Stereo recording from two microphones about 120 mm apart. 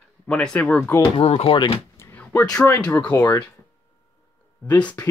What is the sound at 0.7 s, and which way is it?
Speech, 20° left (ahead or behind).